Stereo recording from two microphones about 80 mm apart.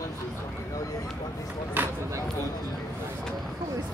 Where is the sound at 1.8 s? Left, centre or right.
Right.